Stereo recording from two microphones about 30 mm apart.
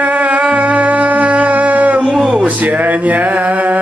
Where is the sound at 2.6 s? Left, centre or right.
Right.